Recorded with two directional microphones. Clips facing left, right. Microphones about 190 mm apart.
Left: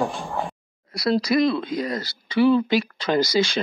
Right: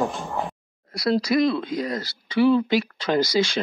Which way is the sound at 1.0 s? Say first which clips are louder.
Even; 50° right (ahead or behind).